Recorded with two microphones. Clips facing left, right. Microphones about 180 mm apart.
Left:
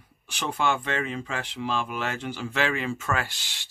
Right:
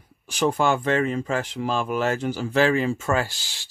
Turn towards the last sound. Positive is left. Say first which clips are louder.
# right 6 dB
turn(degrees=-35)  # may be behind; listen again after turning